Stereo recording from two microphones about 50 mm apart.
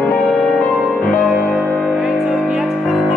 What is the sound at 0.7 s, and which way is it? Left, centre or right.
Music, right.